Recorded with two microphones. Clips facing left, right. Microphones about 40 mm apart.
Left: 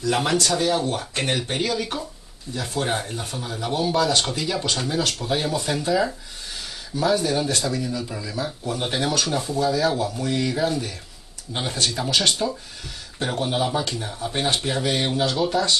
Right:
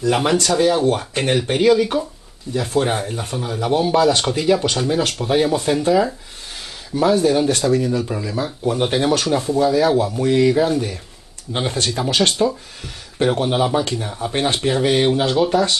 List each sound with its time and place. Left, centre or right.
0.1 s speech: right
6.9 s speech: right
8.0 s speech: right
10.4 s speech: right